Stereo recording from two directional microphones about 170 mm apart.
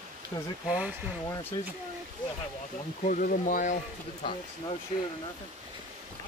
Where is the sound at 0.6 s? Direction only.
10° right (ahead or behind).